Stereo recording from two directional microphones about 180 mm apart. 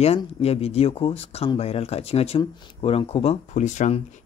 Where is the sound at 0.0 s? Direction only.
35° left (ahead or behind).